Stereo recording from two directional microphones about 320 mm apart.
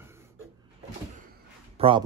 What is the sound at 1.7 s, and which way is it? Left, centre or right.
Speech, centre.